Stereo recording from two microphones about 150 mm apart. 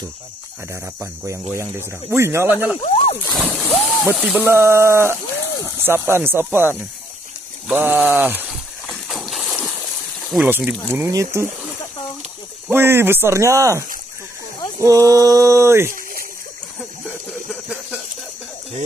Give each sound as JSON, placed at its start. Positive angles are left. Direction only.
{"t": 1.5, "sound": "speech", "side_deg": -15}
{"t": 2.8, "sound": "speech", "side_deg": 45}
{"t": 3.4, "sound": "speech", "side_deg": 5}
{"t": 4.0, "sound": "speech", "side_deg": -5}
{"t": 8.8, "sound": "a sound", "side_deg": 0}
{"t": 10.3, "sound": "speech", "side_deg": -10}
{"t": 12.6, "sound": "speech", "side_deg": -15}
{"t": 14.8, "sound": "a sound", "side_deg": -20}